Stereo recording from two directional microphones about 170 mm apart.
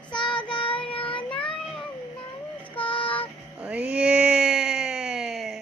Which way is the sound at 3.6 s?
5° right (ahead or behind).